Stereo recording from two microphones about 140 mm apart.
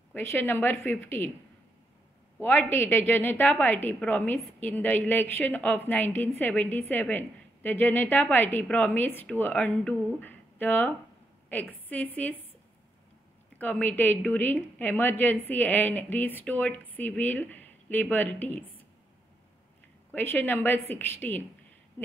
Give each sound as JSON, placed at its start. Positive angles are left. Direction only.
{"t": 0.1, "sound": "a woman's voice", "side_deg": 15}
{"t": 2.4, "sound": "a woman's voice", "side_deg": 15}
{"t": 13.6, "sound": "a woman's voice", "side_deg": 10}
{"t": 20.1, "sound": "a woman's voice", "side_deg": 15}